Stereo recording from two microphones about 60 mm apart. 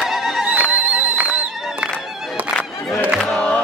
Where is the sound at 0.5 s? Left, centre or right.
Right.